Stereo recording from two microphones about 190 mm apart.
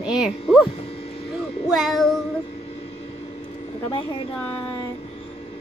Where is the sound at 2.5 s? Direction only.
35° left (ahead or behind).